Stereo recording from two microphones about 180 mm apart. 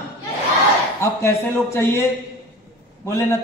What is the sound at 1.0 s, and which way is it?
A man's voice, 15° left (ahead or behind).